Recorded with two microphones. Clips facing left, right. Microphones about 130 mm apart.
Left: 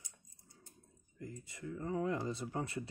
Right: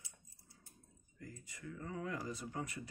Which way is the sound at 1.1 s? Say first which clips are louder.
Left 5 dB; 25° left (ahead or behind).